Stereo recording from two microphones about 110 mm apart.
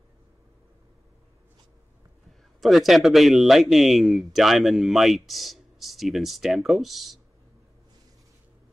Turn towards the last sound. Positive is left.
turn(degrees=0)  # may be behind; listen again after turning